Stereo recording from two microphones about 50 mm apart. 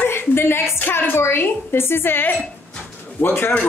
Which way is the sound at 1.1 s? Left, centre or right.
Left.